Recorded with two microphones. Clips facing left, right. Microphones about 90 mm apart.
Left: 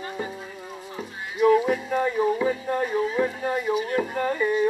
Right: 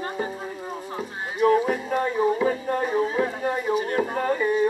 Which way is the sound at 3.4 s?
10° right (ahead or behind).